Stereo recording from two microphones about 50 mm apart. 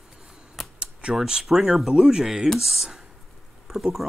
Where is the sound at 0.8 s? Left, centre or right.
Centre.